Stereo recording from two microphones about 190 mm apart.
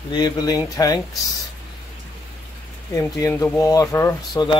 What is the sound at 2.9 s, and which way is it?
Speech, 15° left (ahead or behind).